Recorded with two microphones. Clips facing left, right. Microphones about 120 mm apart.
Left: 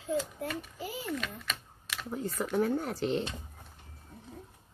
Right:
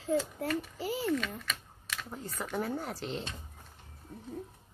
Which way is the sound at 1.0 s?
5° left (ahead or behind).